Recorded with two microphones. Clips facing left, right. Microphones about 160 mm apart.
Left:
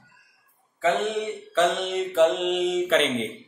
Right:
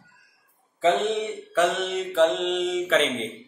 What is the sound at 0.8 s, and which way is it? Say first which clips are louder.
Speech: right 2 dB; 25° right (ahead or behind).